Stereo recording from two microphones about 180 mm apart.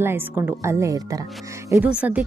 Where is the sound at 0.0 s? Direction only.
10° right (ahead or behind).